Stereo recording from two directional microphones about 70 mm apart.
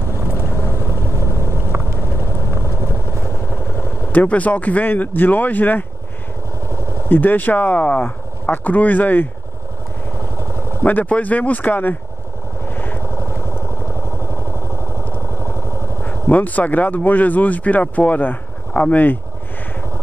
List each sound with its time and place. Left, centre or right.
0.7 s vehicle: right
4.1 s speech: left
7.1 s speech: left
10.8 s speech: left
12.6 s vehicle: left
13.0 s vehicle: right
15.3 s vehicle: right
16.0 s speech: left